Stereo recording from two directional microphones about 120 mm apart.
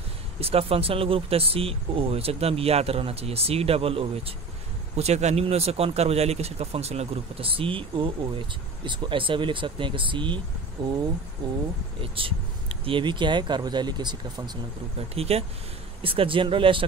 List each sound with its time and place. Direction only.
0.4 s speech: 55° right (ahead or behind)
4.9 s speech: 65° right (ahead or behind); by 14.6 s 35° right (ahead or behind)
15.1 s speech: 55° right (ahead or behind)